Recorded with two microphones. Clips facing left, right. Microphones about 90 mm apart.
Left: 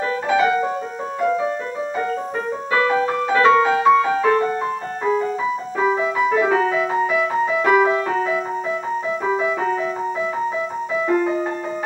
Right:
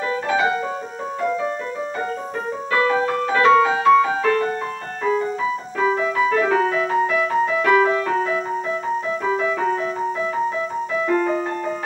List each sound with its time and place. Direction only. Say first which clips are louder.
2.7 s music: even; 15° left (ahead or behind)
9.2 s music: left 1 dB; 15° left (ahead or behind)
11.1 s music: left 1 dB; 10° left (ahead or behind)